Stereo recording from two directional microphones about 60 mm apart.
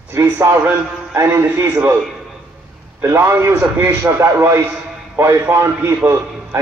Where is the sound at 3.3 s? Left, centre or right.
Right.